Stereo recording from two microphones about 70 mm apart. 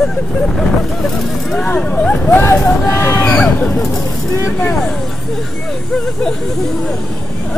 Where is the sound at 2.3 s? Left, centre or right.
Left.